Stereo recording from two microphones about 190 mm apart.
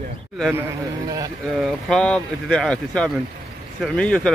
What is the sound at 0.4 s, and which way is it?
Speech, 5° right (ahead or behind).